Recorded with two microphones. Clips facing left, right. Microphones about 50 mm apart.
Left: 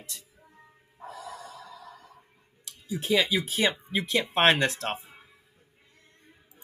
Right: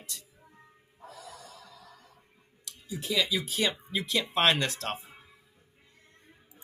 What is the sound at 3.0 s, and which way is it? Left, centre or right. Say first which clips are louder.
Speech: left 4 dB; left.